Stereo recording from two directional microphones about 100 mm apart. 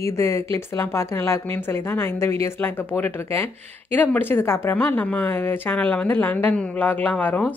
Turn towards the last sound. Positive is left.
turn(degrees=15)  # may be behind; listen again after turning